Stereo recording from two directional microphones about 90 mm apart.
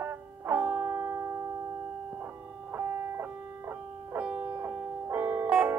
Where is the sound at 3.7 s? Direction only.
20° right (ahead or behind).